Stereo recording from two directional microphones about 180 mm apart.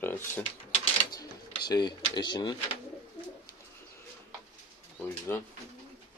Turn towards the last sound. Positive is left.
turn(degrees=15)  # may be behind; listen again after turning